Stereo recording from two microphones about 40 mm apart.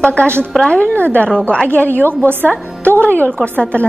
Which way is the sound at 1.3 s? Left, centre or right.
Left.